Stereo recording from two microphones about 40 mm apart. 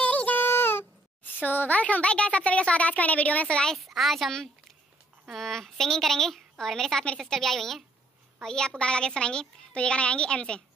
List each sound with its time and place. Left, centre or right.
0.0 s a sound: left
3.7 s speech: centre
5.3 s a woman's voice: centre; by 10.6 s left